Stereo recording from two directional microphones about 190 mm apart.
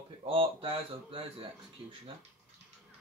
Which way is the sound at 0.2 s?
30° right (ahead or behind).